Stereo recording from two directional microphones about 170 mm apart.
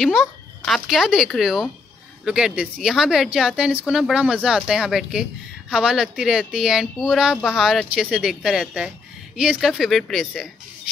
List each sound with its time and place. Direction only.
0.0 s speech: centre (ahead or behind)